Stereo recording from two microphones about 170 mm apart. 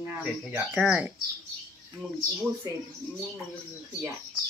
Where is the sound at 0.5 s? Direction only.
5° right (ahead or behind).